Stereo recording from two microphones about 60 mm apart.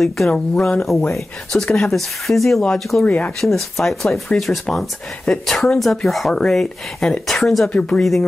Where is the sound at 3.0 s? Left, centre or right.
Left.